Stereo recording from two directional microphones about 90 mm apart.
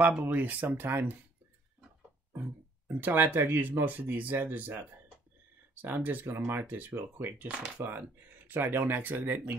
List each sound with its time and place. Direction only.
0.3 s speech: 20° right (ahead or behind)
2.3 s speech: 20° right (ahead or behind)